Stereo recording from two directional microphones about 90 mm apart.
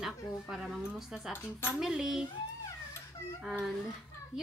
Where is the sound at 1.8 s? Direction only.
5° right (ahead or behind).